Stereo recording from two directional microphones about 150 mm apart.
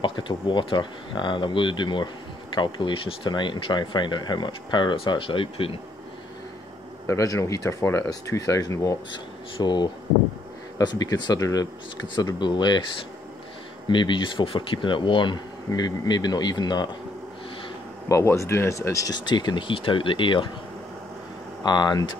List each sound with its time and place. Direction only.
0.0 s speech: 30° left (ahead or behind)
7.1 s speech: 20° left (ahead or behind)
13.8 s speech: 30° left (ahead or behind)
18.0 s speech: 20° left (ahead or behind)
21.6 s speech: 30° left (ahead or behind)